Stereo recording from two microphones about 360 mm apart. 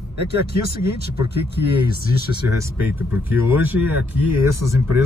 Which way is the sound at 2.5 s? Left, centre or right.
Centre.